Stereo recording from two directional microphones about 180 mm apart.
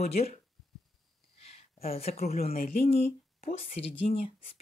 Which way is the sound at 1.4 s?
35° left (ahead or behind).